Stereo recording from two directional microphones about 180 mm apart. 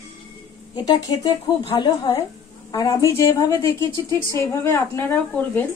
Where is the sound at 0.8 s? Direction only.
20° left (ahead or behind).